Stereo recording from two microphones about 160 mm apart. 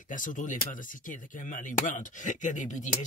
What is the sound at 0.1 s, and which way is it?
Speech, 55° left (ahead or behind).